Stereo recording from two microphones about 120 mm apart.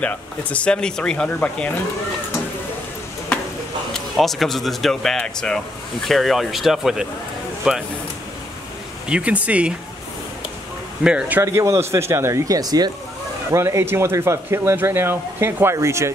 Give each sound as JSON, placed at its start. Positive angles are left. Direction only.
{"t": 0.0, "sound": "speech", "side_deg": 10}
{"t": 3.9, "sound": "speech", "side_deg": 0}
{"t": 9.1, "sound": "speech", "side_deg": -10}
{"t": 11.1, "sound": "speech", "side_deg": -10}
{"t": 11.4, "sound": "speech", "side_deg": -25}